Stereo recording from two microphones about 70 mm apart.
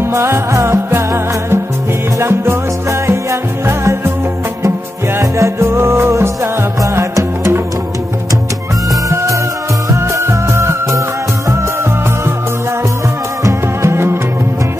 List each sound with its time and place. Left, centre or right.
0.0 s music: right
5.2 s music: right
9.1 s music: right
13.4 s music: right